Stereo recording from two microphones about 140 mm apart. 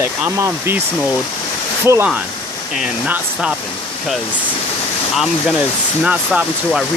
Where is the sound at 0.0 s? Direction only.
15° right (ahead or behind).